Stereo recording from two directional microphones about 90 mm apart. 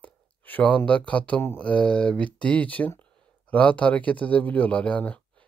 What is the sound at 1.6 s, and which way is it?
Speech, 15° left (ahead or behind).